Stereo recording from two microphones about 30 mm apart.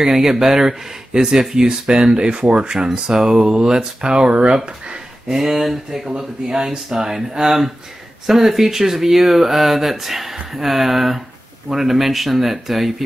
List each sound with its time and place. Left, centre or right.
0.0 s speech: centre; by 5.4 s right
5.4 s speech: centre
6.0 s speech: right; by 12.9 s centre